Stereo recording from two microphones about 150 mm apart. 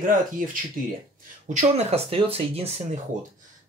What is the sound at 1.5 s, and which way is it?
Speech, 45° right (ahead or behind).